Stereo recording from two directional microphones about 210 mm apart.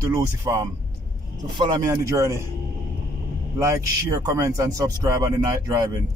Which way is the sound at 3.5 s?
15° right (ahead or behind).